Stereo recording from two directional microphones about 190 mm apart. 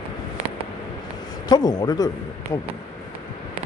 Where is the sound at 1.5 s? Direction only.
20° left (ahead or behind).